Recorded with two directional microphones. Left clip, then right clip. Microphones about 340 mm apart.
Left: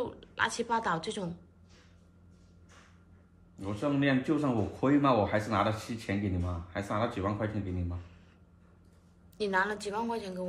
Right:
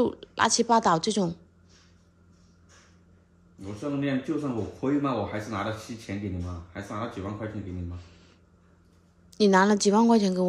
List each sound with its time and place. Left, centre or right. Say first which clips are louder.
0.0 s a woman's voice: right 7 dB; centre
3.5 s speech: left 1 dB; centre
9.3 s a woman's voice: right 9 dB; centre